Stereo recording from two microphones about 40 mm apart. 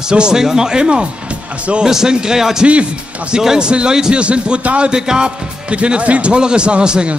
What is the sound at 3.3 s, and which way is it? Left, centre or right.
Speech, centre.